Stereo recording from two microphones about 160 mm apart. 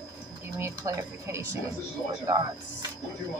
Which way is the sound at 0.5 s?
15° right (ahead or behind).